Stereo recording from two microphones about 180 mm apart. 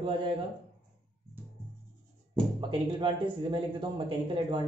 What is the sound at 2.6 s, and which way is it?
Speech, 25° right (ahead or behind).